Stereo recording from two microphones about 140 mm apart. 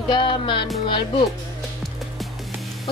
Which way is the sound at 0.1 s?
35° left (ahead or behind).